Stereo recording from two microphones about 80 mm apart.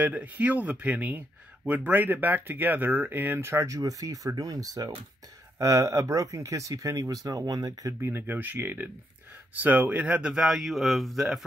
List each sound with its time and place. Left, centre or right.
0.0 s speech: centre
3.6 s speech: right
8.0 s speech: right; by 11.2 s centre